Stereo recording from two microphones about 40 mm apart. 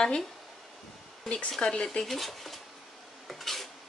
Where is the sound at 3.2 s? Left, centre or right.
Centre.